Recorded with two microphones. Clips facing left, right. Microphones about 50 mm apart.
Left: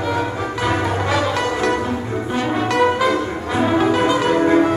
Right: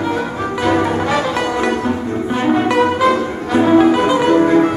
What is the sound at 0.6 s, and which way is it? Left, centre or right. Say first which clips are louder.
Music: right 5 dB; centre.